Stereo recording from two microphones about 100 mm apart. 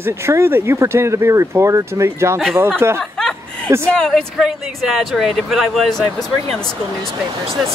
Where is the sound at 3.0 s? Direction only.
5° left (ahead or behind).